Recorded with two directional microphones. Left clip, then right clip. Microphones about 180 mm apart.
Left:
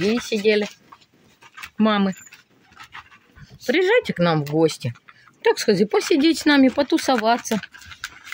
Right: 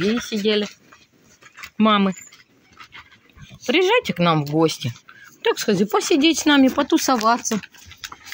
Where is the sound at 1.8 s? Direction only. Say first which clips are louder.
Right 3 dB; 20° left (ahead or behind).